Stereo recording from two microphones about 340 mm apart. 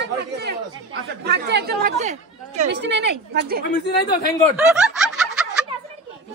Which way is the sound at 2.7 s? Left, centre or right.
Right.